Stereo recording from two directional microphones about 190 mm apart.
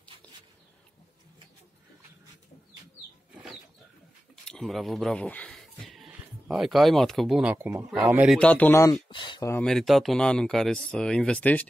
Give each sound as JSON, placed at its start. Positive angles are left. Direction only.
{"t": 4.5, "sound": "speech", "side_deg": 0}
{"t": 8.4, "sound": "speech", "side_deg": 10}
{"t": 9.5, "sound": "speech", "side_deg": 5}